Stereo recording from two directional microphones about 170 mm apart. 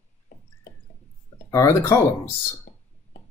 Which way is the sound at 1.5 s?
15° left (ahead or behind).